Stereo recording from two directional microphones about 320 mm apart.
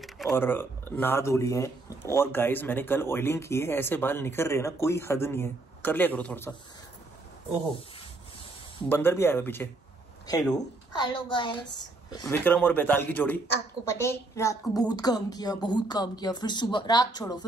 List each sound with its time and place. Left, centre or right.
0.0 s speech: centre
8.8 s a man's voice: centre